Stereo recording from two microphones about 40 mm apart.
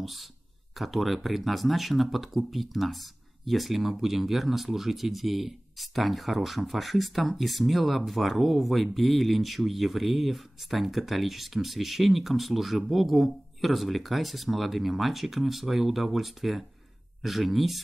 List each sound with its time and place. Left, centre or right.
0.0 s speech: centre